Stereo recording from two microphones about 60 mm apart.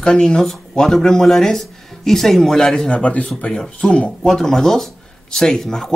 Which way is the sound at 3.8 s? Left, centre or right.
Centre.